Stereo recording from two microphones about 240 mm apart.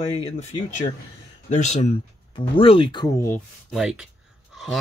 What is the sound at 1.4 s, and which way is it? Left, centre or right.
Speech, left.